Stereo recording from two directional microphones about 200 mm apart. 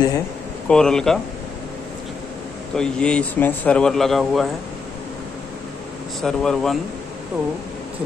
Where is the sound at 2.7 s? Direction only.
5° left (ahead or behind).